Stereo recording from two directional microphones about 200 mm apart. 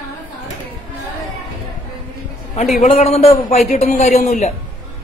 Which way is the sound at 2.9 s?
30° left (ahead or behind).